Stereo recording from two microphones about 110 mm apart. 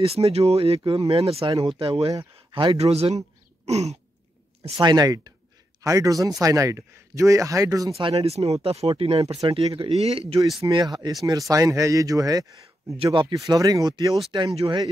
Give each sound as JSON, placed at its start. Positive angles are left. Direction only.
{"t": 0.0, "sound": "speech", "side_deg": -65}
{"t": 2.8, "sound": "a man's voice", "side_deg": -70}
{"t": 3.6, "sound": "throat clearing", "side_deg": -80}
{"t": 4.7, "sound": "a man's voice", "side_deg": -40}
{"t": 7.9, "sound": "speech", "side_deg": -60}
{"t": 8.6, "sound": "speech", "side_deg": -60}
{"t": 10.7, "sound": "a man's voice", "side_deg": -40}
{"t": 12.9, "sound": "speech", "side_deg": -50}
{"t": 13.3, "sound": "a man's voice", "side_deg": -30}